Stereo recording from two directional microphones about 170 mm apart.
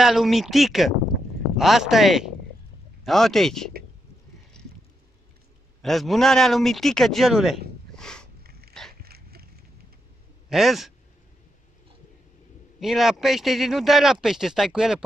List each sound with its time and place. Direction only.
0.0 s speech: centre (ahead or behind)
4.6 s a sound: 5° left (ahead or behind)
5.8 s speech: centre (ahead or behind)
7.9 s a sound: 5° left (ahead or behind)
8.5 s dog: 65° right (ahead or behind)
10.5 s speech: centre (ahead or behind)
12.8 s speech: centre (ahead or behind)